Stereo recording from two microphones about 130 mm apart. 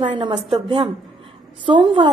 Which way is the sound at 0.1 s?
40° right (ahead or behind).